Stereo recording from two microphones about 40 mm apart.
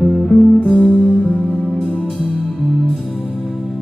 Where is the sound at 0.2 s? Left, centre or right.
Centre.